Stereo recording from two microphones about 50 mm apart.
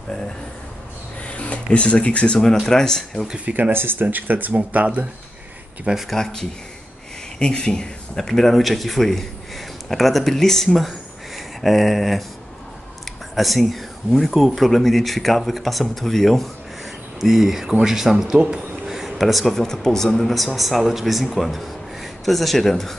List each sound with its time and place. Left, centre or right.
1.2 s rub: left
2.6 s speech: centre
3.3 s speech: right
3.7 s speech: right
4.0 s speech: right
4.6 s speech: right
6.0 s speech: centre
13.3 s a man's voice: centre